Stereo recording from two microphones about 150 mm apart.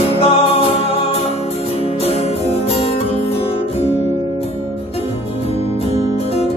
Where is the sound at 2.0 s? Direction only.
45° left (ahead or behind).